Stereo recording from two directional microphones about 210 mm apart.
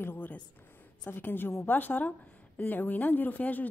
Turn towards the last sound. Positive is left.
turn(degrees=10)  # may be behind; listen again after turning